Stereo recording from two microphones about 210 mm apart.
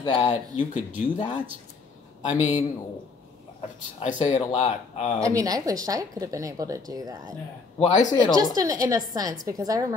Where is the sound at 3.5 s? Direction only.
35° left (ahead or behind).